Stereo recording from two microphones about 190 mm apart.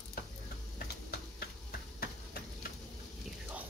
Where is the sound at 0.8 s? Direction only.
55° left (ahead or behind).